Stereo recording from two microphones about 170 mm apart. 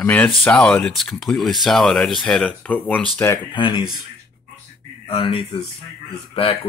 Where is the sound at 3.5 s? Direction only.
25° left (ahead or behind).